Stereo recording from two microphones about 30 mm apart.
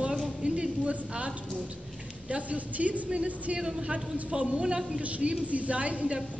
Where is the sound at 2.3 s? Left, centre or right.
Right.